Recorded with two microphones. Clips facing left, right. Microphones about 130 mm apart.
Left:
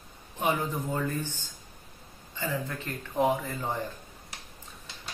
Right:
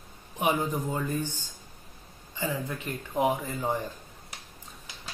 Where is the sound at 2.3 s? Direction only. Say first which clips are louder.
Right 1 dB; 15° right (ahead or behind).